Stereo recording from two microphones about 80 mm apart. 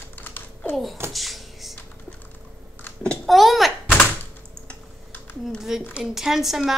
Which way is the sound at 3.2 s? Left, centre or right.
Centre.